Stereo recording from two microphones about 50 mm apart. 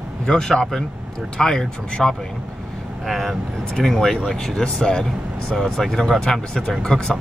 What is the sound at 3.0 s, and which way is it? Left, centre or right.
Speech, centre.